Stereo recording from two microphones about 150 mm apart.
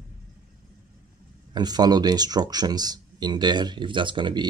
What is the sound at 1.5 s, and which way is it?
Speech, 25° right (ahead or behind).